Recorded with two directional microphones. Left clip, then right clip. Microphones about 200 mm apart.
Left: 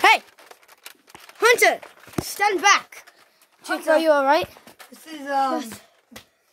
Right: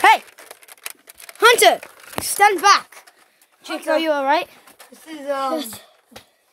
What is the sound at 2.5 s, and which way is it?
Speech, 5° right (ahead or behind).